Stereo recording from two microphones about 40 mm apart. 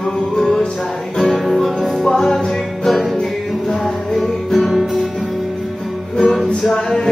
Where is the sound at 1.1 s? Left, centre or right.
Centre.